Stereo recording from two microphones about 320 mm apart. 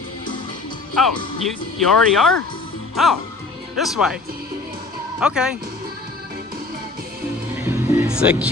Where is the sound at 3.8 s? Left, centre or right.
Centre.